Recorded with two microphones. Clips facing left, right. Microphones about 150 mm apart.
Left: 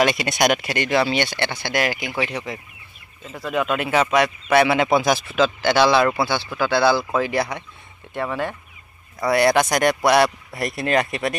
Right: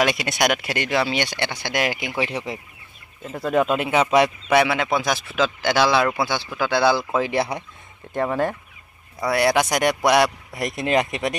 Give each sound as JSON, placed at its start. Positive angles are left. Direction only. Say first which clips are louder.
{"t": 0.0, "sound": "speech", "louder": "left 2 dB", "side_deg": -5}
{"t": 3.4, "sound": "speech", "louder": "right 3 dB", "side_deg": -40}
{"t": 3.7, "sound": "speech", "louder": "left 2 dB", "side_deg": -20}
{"t": 4.9, "sound": "speech", "louder": "left 4 dB", "side_deg": 5}
{"t": 5.4, "sound": "speech", "louder": "left 2 dB", "side_deg": -10}
{"t": 8.1, "sound": "speech", "louder": "right 3 dB", "side_deg": -40}
{"t": 9.2, "sound": "speech", "louder": "left 2 dB", "side_deg": -5}